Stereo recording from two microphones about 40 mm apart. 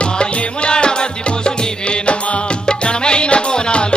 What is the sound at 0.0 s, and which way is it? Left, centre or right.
Music, left.